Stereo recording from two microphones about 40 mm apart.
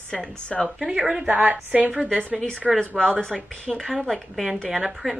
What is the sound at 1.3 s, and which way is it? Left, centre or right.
Speech, right.